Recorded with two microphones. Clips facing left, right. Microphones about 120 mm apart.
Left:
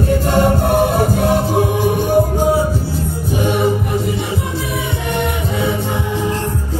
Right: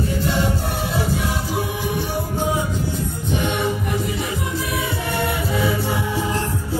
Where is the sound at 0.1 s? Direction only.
55° left (ahead or behind).